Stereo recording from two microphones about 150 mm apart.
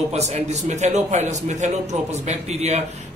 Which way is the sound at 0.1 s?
50° right (ahead or behind).